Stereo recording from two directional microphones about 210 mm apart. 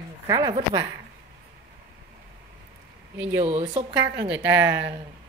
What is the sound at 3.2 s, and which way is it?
Speech, 10° right (ahead or behind).